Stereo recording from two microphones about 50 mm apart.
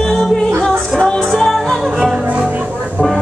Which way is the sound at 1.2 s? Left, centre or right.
Centre.